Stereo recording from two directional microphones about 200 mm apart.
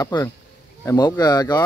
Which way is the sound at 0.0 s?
15° left (ahead or behind).